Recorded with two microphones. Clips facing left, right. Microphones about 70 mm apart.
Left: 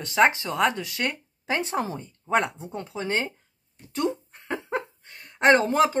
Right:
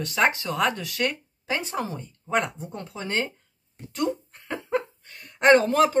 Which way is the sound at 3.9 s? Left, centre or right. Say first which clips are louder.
Even; left.